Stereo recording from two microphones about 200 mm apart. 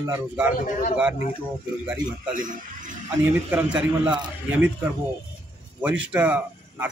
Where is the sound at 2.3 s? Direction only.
40° right (ahead or behind).